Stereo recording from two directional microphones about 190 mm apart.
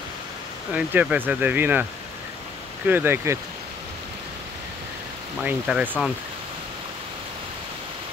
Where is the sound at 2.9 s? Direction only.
10° right (ahead or behind).